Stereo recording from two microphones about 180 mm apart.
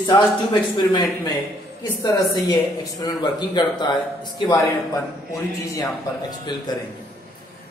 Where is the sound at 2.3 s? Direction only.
20° left (ahead or behind).